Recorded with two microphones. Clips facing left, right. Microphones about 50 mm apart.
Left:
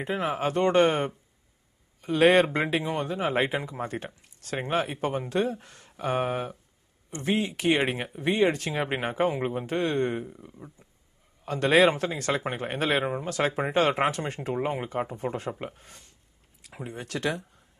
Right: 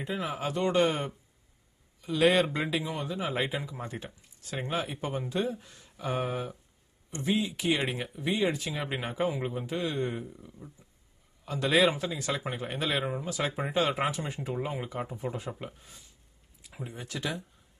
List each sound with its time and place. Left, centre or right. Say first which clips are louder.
0.0 s speech: left 5 dB; left
3.9 s speech: left 5 dB; left
4.6 s speech: left 5 dB; left
10.2 s speech: left 3 dB; left
11.4 s speech: left 4 dB; left
12.9 s speech: left 6 dB; left
13.3 s speech: left 7 dB; left
14.5 s speech: left 6 dB; left